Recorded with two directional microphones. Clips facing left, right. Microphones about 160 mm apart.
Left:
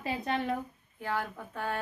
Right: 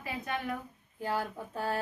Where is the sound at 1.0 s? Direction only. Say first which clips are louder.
Right 1 dB; 35° right (ahead or behind).